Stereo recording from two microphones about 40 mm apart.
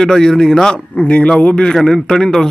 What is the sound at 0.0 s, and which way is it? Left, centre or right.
Speech, centre.